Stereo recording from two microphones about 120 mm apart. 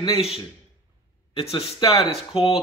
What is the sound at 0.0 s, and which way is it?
A man's voice, 55° left (ahead or behind).